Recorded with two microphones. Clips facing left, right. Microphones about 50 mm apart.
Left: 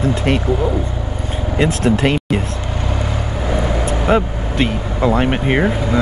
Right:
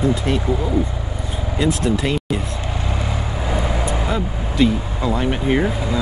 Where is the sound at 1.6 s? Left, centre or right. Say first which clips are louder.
Left 4 dB; left.